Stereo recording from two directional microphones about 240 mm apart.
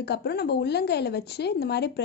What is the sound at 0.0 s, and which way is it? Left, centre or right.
A woman's voice, left.